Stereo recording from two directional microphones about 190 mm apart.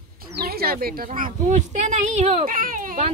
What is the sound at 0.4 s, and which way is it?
A woman's voice, 55° right (ahead or behind).